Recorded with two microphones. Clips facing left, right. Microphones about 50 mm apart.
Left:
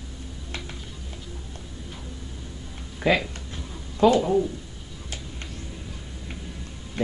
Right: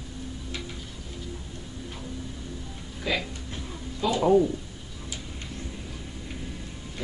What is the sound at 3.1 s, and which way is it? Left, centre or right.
Speech, left.